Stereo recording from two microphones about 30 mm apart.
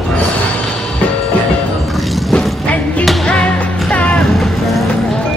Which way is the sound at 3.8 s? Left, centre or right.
Left.